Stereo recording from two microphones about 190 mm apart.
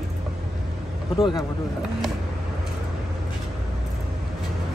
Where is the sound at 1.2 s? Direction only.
25° left (ahead or behind).